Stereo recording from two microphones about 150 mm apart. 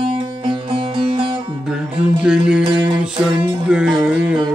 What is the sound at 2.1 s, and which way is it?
Music, 5° right (ahead or behind).